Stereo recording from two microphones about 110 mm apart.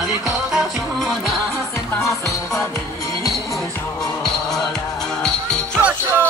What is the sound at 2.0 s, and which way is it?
Music, 25° left (ahead or behind).